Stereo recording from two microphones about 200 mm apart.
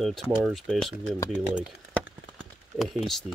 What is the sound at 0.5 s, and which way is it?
Speech, centre (ahead or behind).